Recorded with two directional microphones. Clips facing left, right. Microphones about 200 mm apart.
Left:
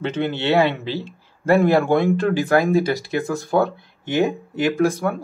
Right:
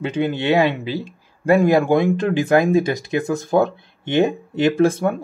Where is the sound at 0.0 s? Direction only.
15° right (ahead or behind).